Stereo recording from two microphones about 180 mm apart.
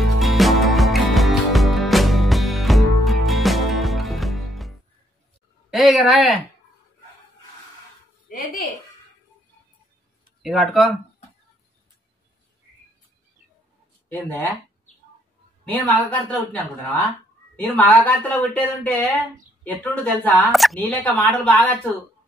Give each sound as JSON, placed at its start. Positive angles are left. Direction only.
{"t": 0.0, "sound": "music", "side_deg": 0}
{"t": 5.7, "sound": "a woman's voice", "side_deg": 0}
{"t": 10.4, "sound": "speech", "side_deg": 0}
{"t": 14.0, "sound": "speech", "side_deg": 10}
{"t": 15.6, "sound": "speech", "side_deg": 10}